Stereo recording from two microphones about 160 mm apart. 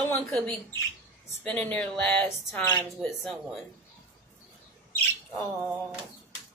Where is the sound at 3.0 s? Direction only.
Centre (ahead or behind).